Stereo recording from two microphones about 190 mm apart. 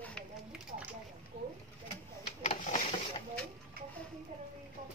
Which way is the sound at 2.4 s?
35° left (ahead or behind).